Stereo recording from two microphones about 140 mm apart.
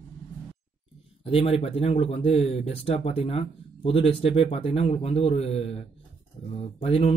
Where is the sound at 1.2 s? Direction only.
45° left (ahead or behind).